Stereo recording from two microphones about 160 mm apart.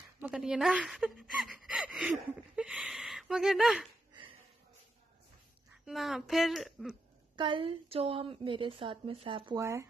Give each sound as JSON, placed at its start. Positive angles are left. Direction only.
{"t": 0.2, "sound": "speech", "side_deg": -5}
{"t": 5.9, "sound": "speech", "side_deg": 0}
{"t": 7.3, "sound": "a woman's voice", "side_deg": -30}
{"t": 9.6, "sound": "speech", "side_deg": -20}